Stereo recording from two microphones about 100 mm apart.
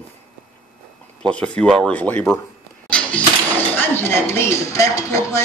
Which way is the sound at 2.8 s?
10° left (ahead or behind).